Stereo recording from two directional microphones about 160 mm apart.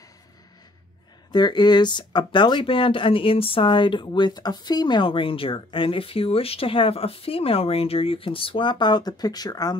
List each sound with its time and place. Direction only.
1.3 s speech: 30° left (ahead or behind)